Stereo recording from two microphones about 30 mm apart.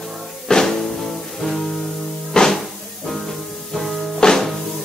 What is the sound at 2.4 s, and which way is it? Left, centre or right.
Music, left.